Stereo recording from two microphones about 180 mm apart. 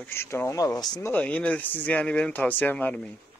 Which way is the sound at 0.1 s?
15° left (ahead or behind).